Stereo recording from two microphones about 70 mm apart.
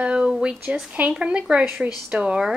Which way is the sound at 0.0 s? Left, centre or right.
Centre.